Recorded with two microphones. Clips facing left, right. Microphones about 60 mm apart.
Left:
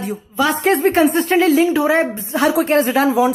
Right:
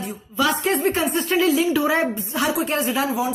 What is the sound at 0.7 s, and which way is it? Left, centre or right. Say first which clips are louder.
A woman's voice: left 7 dB; left.